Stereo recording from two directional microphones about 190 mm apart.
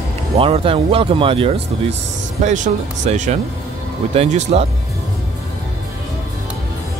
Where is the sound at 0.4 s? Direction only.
30° right (ahead or behind).